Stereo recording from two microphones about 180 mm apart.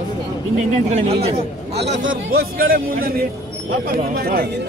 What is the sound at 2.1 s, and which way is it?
Speech, 55° right (ahead or behind).